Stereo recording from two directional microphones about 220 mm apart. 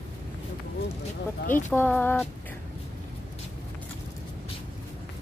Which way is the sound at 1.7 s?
10° left (ahead or behind).